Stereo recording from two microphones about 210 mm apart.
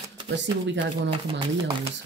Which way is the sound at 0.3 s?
55° right (ahead or behind).